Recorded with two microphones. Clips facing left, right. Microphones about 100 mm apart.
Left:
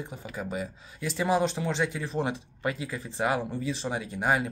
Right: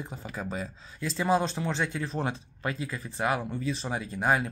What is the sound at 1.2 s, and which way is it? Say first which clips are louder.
Speech: even; 15° left (ahead or behind).